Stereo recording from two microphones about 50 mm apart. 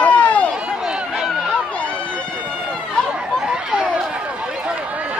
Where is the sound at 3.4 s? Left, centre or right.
Centre.